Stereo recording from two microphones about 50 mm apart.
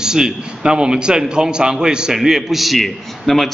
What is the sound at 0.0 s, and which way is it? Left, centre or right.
A man's voice, centre.